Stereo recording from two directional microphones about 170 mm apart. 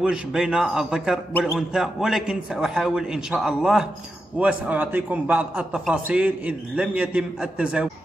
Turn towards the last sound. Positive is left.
turn(degrees=-5)  # may be behind; listen again after turning